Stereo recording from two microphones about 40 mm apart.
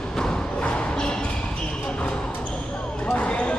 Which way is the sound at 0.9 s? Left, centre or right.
Centre.